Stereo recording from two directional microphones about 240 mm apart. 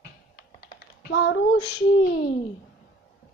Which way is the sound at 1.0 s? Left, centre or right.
Left.